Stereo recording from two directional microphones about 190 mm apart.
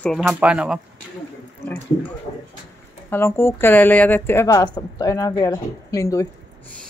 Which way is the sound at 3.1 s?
15° left (ahead or behind).